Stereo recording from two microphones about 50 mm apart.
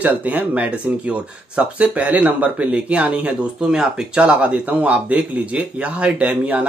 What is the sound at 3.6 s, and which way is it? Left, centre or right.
Speech, centre.